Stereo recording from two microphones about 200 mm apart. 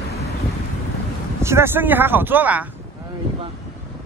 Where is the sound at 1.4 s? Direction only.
10° right (ahead or behind).